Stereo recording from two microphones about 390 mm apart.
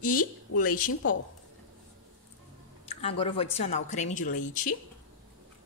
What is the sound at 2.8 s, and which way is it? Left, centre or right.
A woman's voice, centre.